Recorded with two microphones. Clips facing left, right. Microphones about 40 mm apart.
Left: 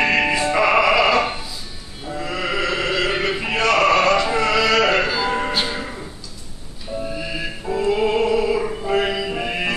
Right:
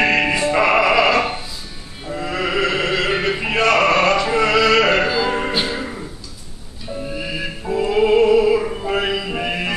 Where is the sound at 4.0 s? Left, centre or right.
Right.